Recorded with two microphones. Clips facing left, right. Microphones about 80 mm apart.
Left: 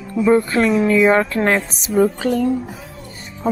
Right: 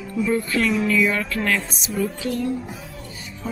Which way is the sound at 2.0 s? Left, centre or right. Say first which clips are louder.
Left 9 dB; left.